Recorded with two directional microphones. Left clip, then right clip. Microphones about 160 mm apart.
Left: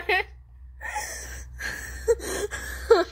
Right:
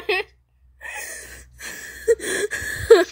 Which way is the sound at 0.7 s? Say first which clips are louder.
Left 1 dB; 40° right (ahead or behind).